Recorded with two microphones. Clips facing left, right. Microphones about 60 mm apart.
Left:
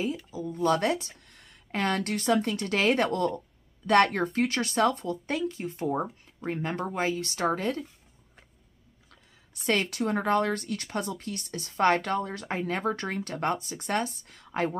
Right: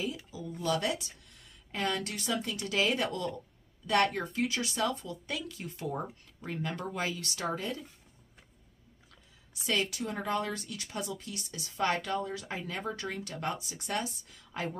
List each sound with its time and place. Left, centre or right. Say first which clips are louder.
0.3 s speech: left 7 dB; left
9.5 s speech: left 5 dB; left